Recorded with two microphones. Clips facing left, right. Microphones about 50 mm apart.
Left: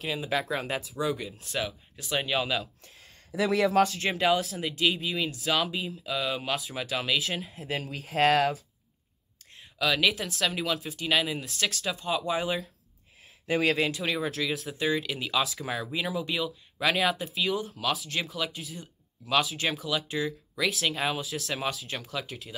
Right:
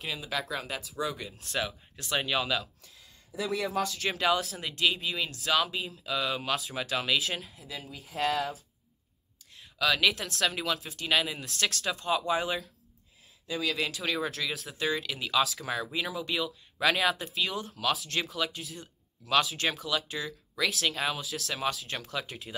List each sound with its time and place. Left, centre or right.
0.2 s speech: left
1.0 s speech: centre
3.3 s speech: left
4.0 s speech: centre
7.5 s speech: left
7.8 s speech: left
9.6 s speech: centre
13.5 s speech: left
13.7 s speech: centre